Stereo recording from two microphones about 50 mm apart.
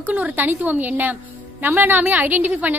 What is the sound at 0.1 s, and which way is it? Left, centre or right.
A woman's voice, right.